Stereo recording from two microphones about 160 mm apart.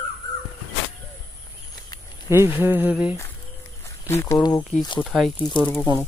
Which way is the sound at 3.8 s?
15° left (ahead or behind).